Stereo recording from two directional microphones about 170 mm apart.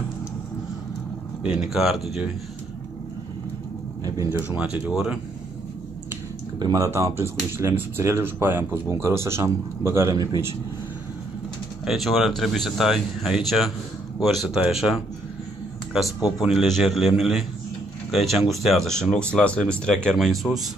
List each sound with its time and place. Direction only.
1.5 s speech: 5° right (ahead or behind)
4.0 s speech: 15° right (ahead or behind)
6.6 s speech: 20° right (ahead or behind)
11.8 s speech: centre (ahead or behind)